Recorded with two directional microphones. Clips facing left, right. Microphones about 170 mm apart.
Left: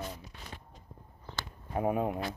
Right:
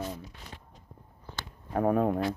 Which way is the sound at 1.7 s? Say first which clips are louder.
Right 4 dB; 10° left (ahead or behind).